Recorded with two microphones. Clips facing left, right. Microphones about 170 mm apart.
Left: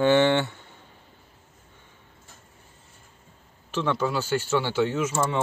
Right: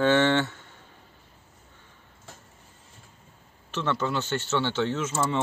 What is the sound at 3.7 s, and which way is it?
Speech, 10° left (ahead or behind).